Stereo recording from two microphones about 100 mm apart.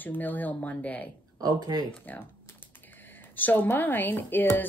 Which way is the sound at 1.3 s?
45° right (ahead or behind).